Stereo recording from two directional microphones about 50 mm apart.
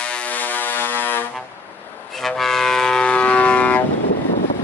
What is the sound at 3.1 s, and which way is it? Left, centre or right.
Civil defense siren, left.